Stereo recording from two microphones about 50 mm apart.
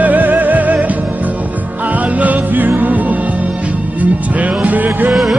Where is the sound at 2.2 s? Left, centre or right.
Right.